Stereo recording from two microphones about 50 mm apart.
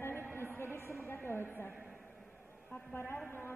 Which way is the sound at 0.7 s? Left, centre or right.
Left.